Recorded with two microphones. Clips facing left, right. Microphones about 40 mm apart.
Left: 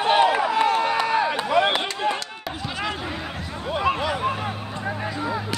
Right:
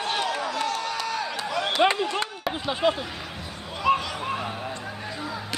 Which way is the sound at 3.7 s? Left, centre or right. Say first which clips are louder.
Left 1 dB; centre.